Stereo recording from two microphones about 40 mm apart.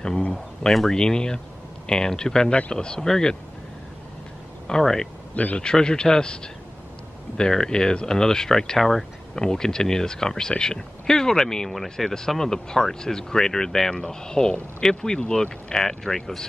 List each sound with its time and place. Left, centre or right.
0.3 s speech: centre
4.7 s speech: centre
5.3 s speech: left
5.6 s speech: centre